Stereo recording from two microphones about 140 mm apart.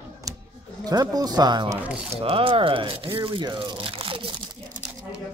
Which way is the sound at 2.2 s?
40° right (ahead or behind).